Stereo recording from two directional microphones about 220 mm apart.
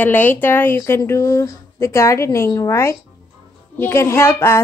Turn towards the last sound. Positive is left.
turn(degrees=10)  # may be behind; listen again after turning